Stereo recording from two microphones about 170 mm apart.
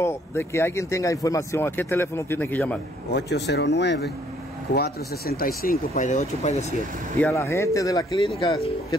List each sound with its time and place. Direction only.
0.0 s speech: 15° left (ahead or behind)
3.1 s speech: 80° left
4.7 s speech: 65° left (ahead or behind); by 6.5 s 45° left (ahead or behind)
7.2 s speech: 15° left (ahead or behind)